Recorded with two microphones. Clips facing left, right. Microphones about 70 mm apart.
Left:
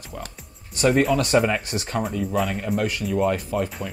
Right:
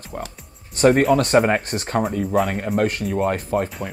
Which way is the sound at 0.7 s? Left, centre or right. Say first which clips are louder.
Right 4 dB; right.